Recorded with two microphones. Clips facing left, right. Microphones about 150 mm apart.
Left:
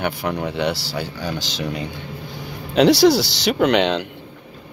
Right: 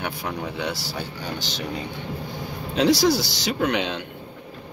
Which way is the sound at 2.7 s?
75° left (ahead or behind).